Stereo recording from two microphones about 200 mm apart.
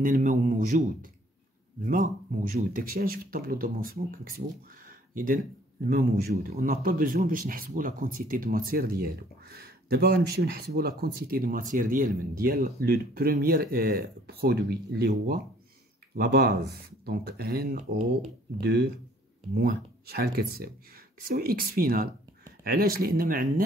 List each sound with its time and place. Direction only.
0.0 s a man's voice: 40° right (ahead or behind)
1.9 s speech: 45° right (ahead or behind)
4.8 s a sound: 45° right (ahead or behind)
5.9 s speech: 50° right (ahead or behind)